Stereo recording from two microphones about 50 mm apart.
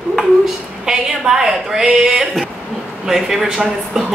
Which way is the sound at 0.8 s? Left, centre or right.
Centre.